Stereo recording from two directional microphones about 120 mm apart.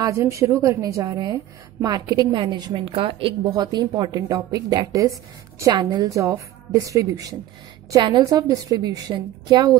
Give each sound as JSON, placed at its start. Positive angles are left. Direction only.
{"t": 0.0, "sound": "a woman's voice", "side_deg": -25}
{"t": 3.5, "sound": "a woman's voice", "side_deg": -35}